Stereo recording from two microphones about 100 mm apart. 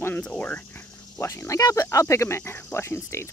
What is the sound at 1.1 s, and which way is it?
Speech, 30° left (ahead or behind).